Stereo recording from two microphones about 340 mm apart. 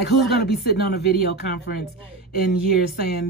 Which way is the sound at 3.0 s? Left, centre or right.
Left.